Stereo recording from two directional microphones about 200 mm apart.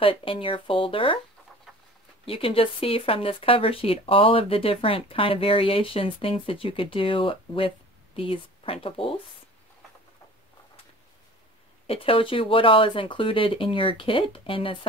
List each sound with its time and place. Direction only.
0.0 s speech: 25° left (ahead or behind)
2.2 s speech: 30° left (ahead or behind)
11.9 s speech: 25° left (ahead or behind)